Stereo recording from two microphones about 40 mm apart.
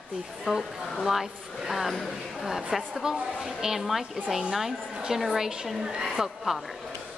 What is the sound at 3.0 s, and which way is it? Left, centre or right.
A woman's voice, centre.